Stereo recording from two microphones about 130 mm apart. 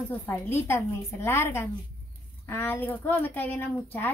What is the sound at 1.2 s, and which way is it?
A woman's voice, 20° left (ahead or behind).